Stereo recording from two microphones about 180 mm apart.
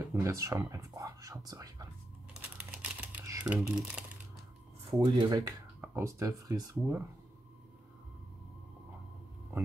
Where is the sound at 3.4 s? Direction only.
5° right (ahead or behind).